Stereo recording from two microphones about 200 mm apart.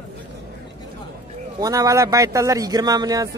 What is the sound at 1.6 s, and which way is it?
A man's voice, 15° right (ahead or behind).